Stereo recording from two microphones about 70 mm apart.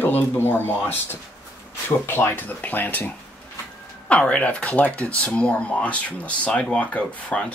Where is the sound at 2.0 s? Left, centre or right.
Left.